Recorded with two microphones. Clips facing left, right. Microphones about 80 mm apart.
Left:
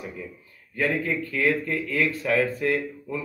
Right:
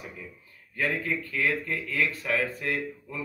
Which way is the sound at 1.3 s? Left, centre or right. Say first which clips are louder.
Left 5 dB; left.